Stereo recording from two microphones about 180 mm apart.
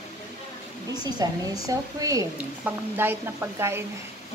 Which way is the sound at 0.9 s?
20° right (ahead or behind).